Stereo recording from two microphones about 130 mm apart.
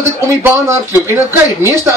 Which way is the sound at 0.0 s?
20° right (ahead or behind).